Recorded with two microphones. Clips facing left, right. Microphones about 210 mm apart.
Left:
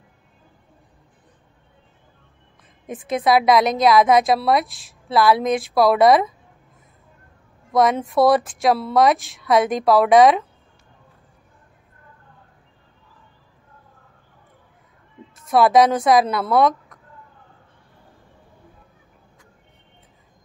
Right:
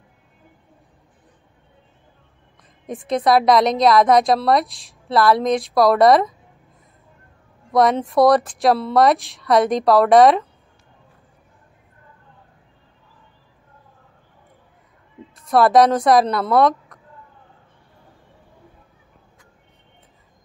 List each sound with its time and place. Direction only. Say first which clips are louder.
2.9 s a woman's voice: right 1 dB; centre (ahead or behind)
7.7 s a woman's voice: right 1 dB; centre (ahead or behind)
15.3 s a woman's voice: right 1 dB; centre (ahead or behind)